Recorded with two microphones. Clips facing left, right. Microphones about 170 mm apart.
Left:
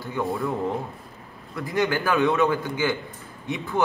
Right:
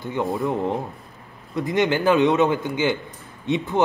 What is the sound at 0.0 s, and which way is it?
Speech, 20° right (ahead or behind).